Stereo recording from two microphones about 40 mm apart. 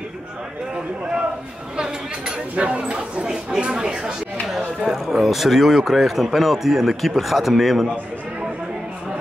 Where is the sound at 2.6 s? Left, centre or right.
Right.